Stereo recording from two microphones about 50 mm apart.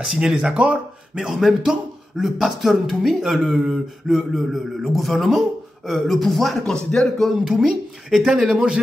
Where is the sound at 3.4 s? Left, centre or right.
Centre.